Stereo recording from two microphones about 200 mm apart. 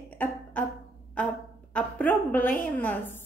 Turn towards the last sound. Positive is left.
turn(degrees=10)  # may be behind; listen again after turning